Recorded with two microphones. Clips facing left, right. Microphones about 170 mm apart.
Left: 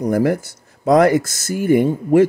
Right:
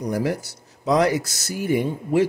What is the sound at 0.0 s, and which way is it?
Speech, 55° left (ahead or behind).